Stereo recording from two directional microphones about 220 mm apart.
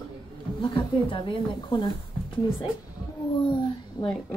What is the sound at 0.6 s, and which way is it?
Speech, 25° left (ahead or behind).